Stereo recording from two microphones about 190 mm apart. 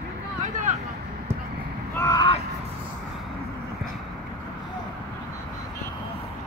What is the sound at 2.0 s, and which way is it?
Vehicle, 20° left (ahead or behind).